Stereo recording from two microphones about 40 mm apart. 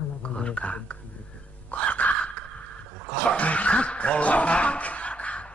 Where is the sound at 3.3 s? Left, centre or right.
Left.